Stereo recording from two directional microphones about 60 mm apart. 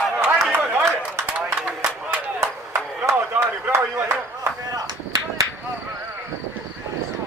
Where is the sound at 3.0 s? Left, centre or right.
Right.